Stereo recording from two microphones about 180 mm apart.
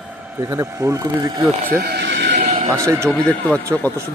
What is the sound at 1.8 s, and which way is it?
Neigh, 65° right (ahead or behind).